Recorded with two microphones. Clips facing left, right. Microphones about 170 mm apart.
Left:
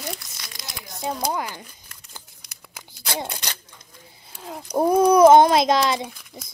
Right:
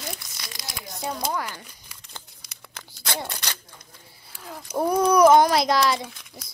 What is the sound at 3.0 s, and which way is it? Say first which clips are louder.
Scissors: left 2 dB; 15° left (ahead or behind).